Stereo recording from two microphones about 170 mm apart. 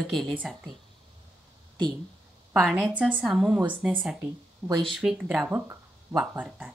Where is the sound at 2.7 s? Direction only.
10° right (ahead or behind).